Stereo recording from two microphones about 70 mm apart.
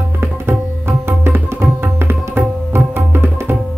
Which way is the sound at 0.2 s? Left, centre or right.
Right.